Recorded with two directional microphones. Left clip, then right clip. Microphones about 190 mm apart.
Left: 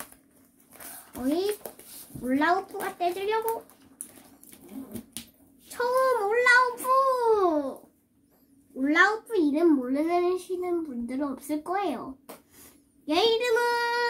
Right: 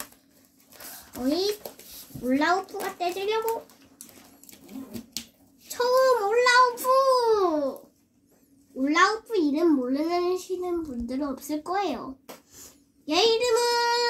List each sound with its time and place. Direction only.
0.7 s a sound: centre (ahead or behind)
2.2 s a child's voice: 5° left (ahead or behind)
5.7 s child singing: centre (ahead or behind)
8.8 s a child's voice: 5° left (ahead or behind)